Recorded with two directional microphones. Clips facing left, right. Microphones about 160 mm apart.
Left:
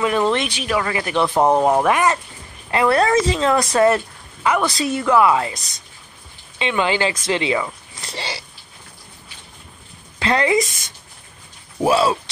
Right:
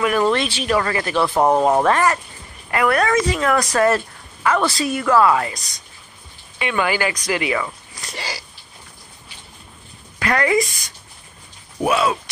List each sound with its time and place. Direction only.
0.0 s a sound: 20° left (ahead or behind)
0.7 s speech: 10° left (ahead or behind)
2.7 s speech: 25° left (ahead or behind)
6.6 s speech: 20° left (ahead or behind)
7.9 s a sound: 25° left (ahead or behind)
10.1 s a woman's voice: 25° left (ahead or behind)
11.8 s speech: 30° left (ahead or behind)